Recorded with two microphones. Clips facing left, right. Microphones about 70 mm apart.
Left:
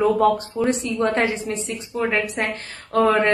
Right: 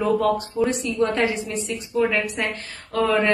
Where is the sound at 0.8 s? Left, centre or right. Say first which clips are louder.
Left 1 dB; left.